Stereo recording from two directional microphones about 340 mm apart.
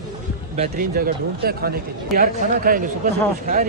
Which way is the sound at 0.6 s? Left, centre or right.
Right.